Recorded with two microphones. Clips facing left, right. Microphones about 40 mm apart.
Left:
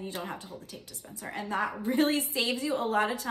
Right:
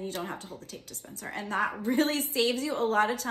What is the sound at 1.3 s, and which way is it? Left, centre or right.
Speech, right.